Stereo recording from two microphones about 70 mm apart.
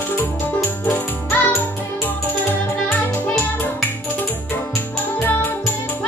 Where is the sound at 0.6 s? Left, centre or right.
Left.